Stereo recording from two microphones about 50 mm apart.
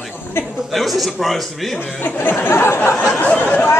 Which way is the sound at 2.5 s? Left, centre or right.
Left.